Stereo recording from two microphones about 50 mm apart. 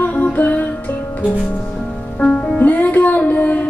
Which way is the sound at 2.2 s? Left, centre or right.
Left.